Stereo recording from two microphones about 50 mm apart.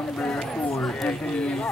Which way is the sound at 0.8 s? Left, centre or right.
Centre.